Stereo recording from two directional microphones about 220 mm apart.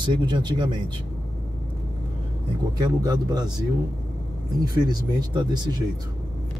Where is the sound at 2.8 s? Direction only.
20° right (ahead or behind).